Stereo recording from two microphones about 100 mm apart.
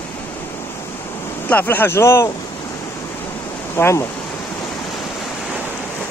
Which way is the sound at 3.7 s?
25° left (ahead or behind).